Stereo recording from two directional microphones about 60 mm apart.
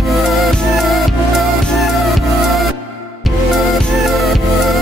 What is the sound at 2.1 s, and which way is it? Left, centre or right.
Music, centre.